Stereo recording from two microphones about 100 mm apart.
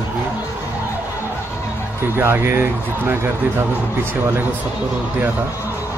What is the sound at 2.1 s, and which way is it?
Speech, 25° right (ahead or behind).